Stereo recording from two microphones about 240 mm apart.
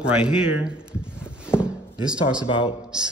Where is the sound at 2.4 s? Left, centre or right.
Left.